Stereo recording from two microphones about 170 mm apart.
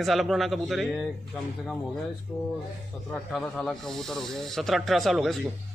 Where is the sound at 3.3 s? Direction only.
Centre (ahead or behind).